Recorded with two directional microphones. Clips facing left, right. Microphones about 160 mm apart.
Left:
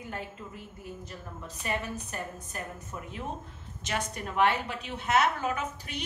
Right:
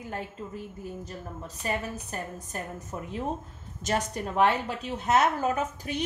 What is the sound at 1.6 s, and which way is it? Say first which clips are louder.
A woman's voice: right 2 dB; 40° right (ahead or behind).